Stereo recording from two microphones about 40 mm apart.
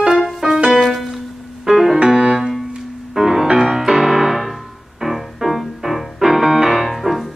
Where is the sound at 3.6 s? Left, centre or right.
Centre.